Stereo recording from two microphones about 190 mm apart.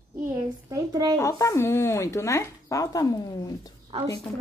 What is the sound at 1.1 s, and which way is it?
Speech, 15° left (ahead or behind).